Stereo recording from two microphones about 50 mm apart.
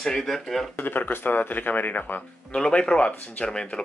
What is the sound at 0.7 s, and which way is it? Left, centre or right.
Speech, left.